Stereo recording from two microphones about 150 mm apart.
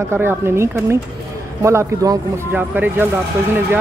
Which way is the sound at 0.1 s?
15° right (ahead or behind).